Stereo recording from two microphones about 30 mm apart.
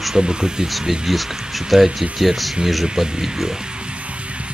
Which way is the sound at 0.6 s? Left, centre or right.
Centre.